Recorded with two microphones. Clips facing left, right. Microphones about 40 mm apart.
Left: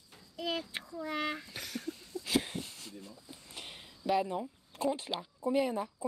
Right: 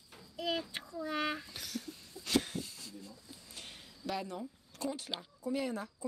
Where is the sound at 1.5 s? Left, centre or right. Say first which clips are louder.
Left 3 dB; centre.